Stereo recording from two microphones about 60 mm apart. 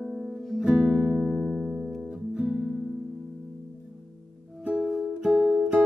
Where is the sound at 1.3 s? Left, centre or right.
Centre.